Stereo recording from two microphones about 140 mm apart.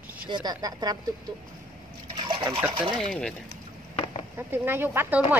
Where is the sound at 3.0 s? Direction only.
5° left (ahead or behind).